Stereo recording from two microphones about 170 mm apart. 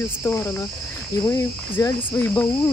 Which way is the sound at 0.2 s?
15° left (ahead or behind).